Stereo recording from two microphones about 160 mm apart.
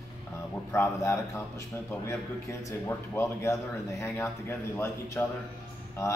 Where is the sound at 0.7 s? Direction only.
15° left (ahead or behind).